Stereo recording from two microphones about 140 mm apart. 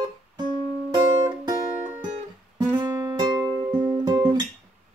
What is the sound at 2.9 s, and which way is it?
Music, 15° right (ahead or behind).